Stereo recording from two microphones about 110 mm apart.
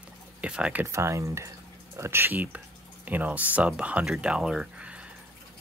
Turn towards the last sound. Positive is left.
turn(degrees=-10)  # may be behind; listen again after turning